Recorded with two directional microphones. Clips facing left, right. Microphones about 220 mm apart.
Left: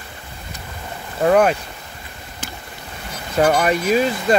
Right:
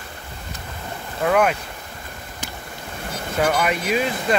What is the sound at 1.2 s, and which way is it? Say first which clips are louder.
Speech: left 4 dB; 35° left (ahead or behind).